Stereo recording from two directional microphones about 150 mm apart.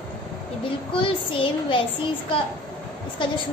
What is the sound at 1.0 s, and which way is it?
Speech, 35° left (ahead or behind).